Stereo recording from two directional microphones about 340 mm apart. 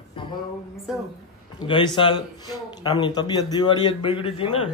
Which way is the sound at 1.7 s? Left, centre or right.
Centre.